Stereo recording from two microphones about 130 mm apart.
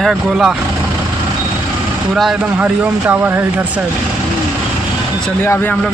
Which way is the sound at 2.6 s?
15° right (ahead or behind).